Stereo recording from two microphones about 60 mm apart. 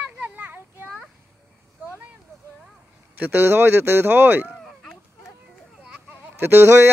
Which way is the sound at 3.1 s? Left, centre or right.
Right.